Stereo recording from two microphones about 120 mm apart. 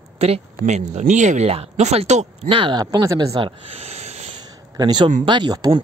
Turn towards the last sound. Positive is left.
turn(degrees=-40)  # may be behind; listen again after turning